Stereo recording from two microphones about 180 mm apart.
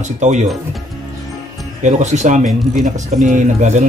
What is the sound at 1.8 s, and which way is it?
Speech, 40° right (ahead or behind).